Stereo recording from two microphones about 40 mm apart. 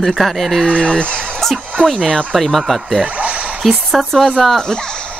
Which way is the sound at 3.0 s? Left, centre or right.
Right.